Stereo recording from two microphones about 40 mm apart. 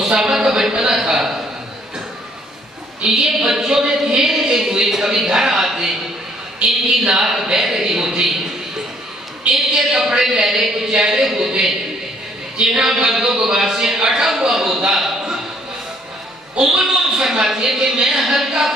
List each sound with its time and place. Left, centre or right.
0.0 s a man's voice: centre
3.0 s speech: centre
6.6 s a man's voice: right
7.1 s speech: centre
9.5 s a woman's voice: centre
12.5 s speech: centre
14.5 s a sound: centre
16.5 s a man's voice: centre